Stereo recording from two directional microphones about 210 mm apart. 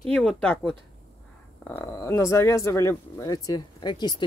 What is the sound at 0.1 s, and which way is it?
Speech, 5° left (ahead or behind).